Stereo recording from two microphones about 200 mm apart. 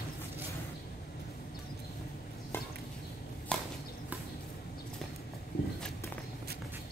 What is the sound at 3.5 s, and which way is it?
Horse, 5° left (ahead or behind).